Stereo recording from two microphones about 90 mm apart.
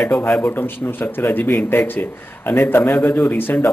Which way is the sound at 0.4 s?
20° left (ahead or behind).